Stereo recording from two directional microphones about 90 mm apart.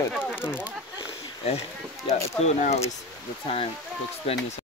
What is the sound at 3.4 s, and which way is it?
Speech, 90° left.